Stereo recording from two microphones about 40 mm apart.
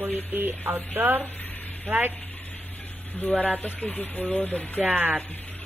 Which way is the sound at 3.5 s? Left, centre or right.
Left.